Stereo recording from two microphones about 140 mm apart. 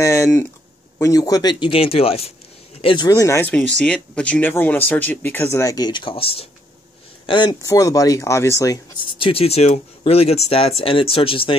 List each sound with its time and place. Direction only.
0.0 s speech: 20° left (ahead or behind); by 3.1 s 35° left (ahead or behind)
3.1 s speech: 20° left (ahead or behind)
3.5 s speech: 5° left (ahead or behind); by 7.5 s 35° left (ahead or behind)
7.6 s speech: 25° left (ahead or behind)
9.0 s speech: 40° left (ahead or behind)